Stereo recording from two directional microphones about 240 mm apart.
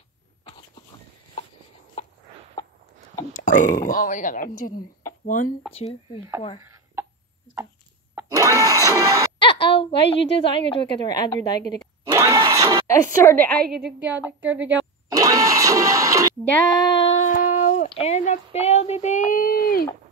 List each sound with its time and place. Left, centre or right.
2.0 s a sound: left
3.3 s a woman's voice: left
6.6 s a sound: centre
8.1 s music: centre
9.4 s a sound: left
10.3 s a woman's voice: left
12.1 s engine starting: centre
12.8 s a woman's voice: centre
13.7 s a woman's voice: centre
14.4 s music: centre
16.9 s humming: left
17.2 s a sound: left